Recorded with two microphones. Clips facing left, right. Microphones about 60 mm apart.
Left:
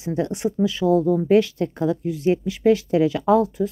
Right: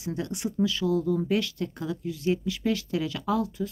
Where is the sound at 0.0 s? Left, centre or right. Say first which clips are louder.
Left 8 dB; left.